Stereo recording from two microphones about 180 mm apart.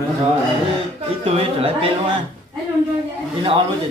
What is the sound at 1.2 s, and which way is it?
Speech, 30° right (ahead or behind).